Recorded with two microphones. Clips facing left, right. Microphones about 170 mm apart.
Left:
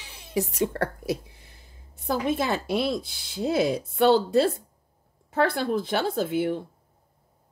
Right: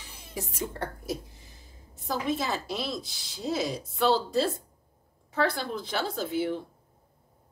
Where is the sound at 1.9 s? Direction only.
60° left (ahead or behind).